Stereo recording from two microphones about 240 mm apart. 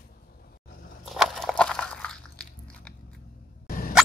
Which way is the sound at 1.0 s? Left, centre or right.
Centre.